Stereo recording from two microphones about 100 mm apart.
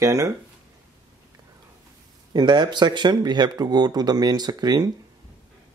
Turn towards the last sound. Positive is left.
turn(degrees=-45)  # may be behind; listen again after turning